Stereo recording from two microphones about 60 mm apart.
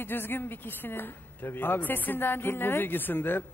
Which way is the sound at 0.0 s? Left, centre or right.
Left.